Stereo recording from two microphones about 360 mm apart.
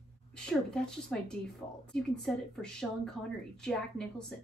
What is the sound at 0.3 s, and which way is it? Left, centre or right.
A woman's voice, centre.